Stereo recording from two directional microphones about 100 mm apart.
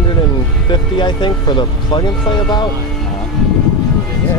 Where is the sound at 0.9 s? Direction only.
50° left (ahead or behind).